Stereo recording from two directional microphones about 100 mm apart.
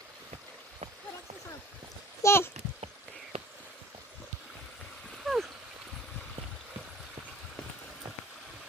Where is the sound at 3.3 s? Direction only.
90° right.